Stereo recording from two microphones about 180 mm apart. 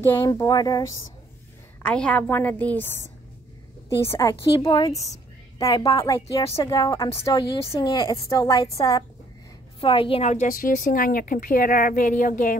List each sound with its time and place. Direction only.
0.0 s speech: 15° left (ahead or behind)
1.8 s a woman's voice: 5° left (ahead or behind)
4.0 s a woman's voice: 15° left (ahead or behind); by 12.5 s 50° left (ahead or behind)